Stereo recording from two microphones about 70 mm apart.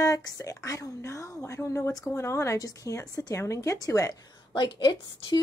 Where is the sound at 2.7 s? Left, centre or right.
Left.